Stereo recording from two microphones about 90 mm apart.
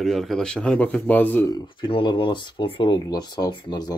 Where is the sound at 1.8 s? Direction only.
70° left (ahead or behind); by 3.9 s 50° left (ahead or behind).